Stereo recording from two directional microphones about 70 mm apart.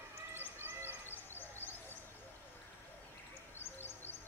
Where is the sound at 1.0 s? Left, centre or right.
Left.